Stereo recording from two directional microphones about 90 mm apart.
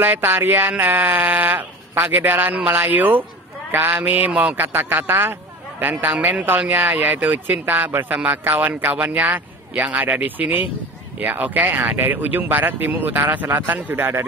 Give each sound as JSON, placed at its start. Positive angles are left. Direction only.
{"t": 0.0, "sound": "a man's voice", "side_deg": -25}